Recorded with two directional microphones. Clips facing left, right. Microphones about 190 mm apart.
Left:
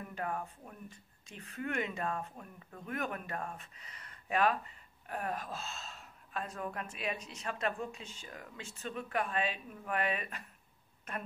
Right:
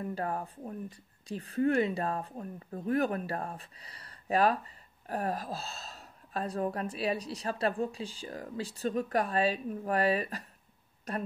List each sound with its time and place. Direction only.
0.0 s speech: 35° right (ahead or behind)